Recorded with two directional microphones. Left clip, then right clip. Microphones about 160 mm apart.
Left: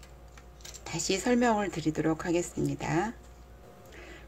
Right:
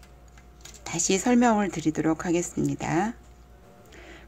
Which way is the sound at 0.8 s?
25° right (ahead or behind).